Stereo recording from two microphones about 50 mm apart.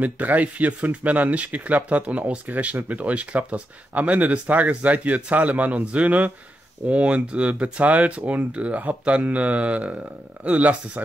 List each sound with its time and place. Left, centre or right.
0.0 s speech: right